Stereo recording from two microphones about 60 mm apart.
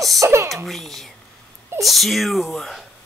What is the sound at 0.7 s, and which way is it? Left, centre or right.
Speech, centre.